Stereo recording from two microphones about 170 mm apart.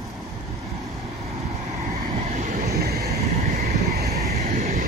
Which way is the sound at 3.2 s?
40° right (ahead or behind).